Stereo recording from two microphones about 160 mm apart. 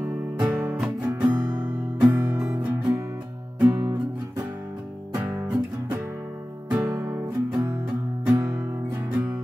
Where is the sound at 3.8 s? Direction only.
20° right (ahead or behind).